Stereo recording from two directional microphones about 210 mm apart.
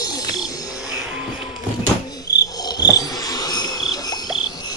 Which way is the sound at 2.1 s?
20° left (ahead or behind).